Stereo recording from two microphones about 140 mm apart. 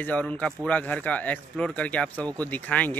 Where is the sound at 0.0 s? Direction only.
10° left (ahead or behind).